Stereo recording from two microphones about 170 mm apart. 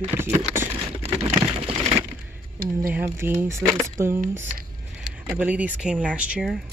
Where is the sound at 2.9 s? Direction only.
15° right (ahead or behind).